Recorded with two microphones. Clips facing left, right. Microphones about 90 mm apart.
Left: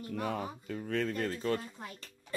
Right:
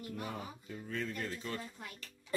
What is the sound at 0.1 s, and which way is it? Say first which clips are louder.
Speech: left 9 dB; 60° left (ahead or behind).